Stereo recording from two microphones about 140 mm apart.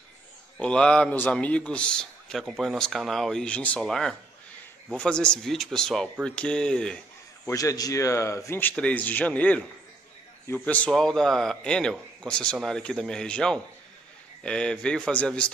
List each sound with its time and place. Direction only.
0.6 s a man's voice: 5° left (ahead or behind)
7.4 s a man's voice: 25° left (ahead or behind); by 15.5 s 5° left (ahead or behind)